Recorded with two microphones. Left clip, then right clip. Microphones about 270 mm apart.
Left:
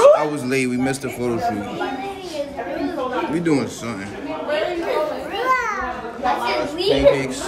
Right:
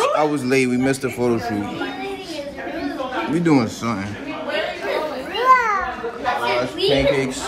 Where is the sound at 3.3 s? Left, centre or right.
Centre.